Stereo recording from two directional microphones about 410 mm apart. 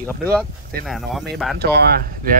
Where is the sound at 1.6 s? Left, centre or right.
Right.